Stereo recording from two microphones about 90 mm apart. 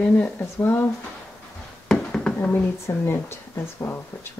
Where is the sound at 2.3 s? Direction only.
25° left (ahead or behind).